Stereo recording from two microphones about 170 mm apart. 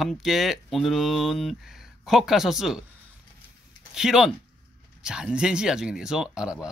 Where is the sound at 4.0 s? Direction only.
5° right (ahead or behind).